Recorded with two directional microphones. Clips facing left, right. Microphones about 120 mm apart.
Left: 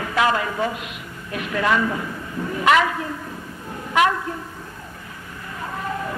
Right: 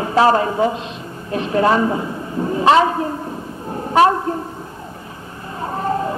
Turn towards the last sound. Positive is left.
turn(degrees=-35)  # may be behind; listen again after turning